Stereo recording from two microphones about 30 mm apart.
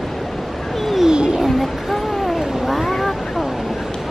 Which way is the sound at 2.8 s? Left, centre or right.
Centre.